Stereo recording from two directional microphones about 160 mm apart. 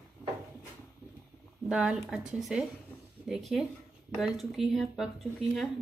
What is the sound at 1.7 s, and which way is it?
A woman's voice, 5° right (ahead or behind).